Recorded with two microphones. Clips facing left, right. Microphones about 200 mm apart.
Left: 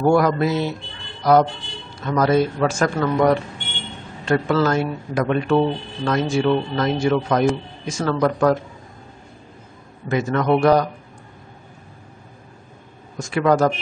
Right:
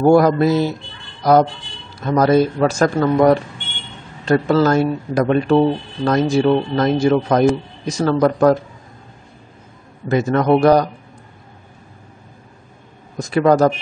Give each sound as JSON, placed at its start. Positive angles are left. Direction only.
{"t": 0.0, "sound": "a man's voice", "side_deg": -35}
{"t": 4.3, "sound": "a man's voice", "side_deg": -35}
{"t": 10.0, "sound": "a man's voice", "side_deg": -35}
{"t": 13.2, "sound": "a man's voice", "side_deg": -35}